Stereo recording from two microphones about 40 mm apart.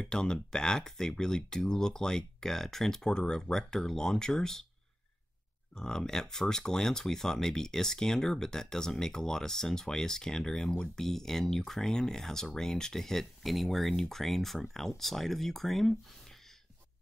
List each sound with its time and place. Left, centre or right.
0.0 s speech: centre
5.8 s speech: centre